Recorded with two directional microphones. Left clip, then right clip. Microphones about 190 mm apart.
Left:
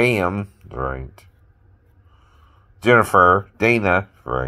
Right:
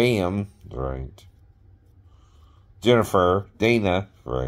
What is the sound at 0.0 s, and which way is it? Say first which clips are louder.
Speech: left 4 dB; 5° right (ahead or behind).